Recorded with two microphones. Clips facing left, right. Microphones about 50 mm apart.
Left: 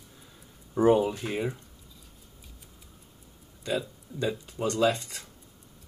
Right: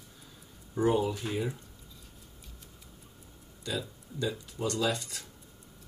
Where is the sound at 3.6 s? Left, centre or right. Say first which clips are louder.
Left 5 dB; left.